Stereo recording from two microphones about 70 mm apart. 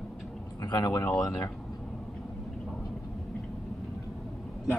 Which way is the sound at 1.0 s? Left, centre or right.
Left.